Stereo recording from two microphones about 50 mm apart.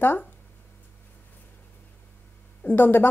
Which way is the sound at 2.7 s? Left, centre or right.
Left.